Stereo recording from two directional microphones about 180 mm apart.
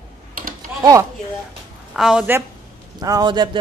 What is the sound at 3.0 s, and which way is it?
Speech, 20° right (ahead or behind).